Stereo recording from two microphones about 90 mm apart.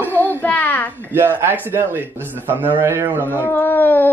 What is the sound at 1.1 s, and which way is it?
Speech, 25° right (ahead or behind).